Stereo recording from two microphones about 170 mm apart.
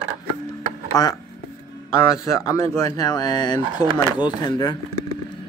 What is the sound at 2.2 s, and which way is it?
Speech, 20° left (ahead or behind).